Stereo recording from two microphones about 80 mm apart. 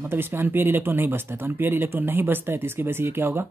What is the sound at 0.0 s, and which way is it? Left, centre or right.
Speech, right.